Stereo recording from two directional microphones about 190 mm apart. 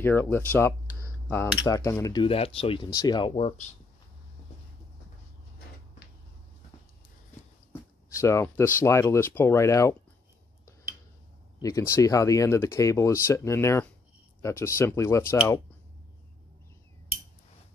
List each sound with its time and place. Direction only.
0.0 s speech: 10° left (ahead or behind)
2.2 s speech: 30° left (ahead or behind)
8.2 s speech: 15° left (ahead or behind)
11.6 s speech: 15° left (ahead or behind)